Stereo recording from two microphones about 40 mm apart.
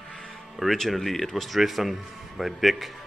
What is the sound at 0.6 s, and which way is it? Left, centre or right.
Speech, centre.